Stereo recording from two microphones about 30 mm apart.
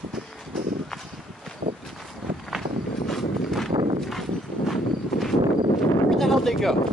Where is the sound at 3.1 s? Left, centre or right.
Centre.